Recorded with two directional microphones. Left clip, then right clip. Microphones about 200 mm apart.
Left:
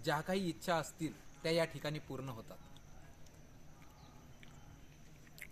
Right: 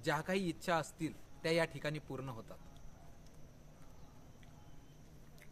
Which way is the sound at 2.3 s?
5° left (ahead or behind).